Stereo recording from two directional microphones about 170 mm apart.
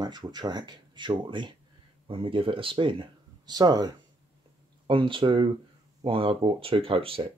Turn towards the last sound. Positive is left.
turn(degrees=-35)  # may be behind; listen again after turning